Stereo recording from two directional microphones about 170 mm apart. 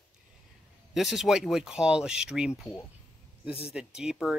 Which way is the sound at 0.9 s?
Centre (ahead or behind).